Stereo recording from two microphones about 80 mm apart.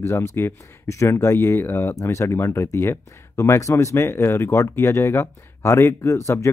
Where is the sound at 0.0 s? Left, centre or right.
Left.